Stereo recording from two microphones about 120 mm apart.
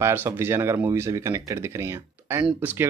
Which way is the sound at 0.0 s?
20° right (ahead or behind).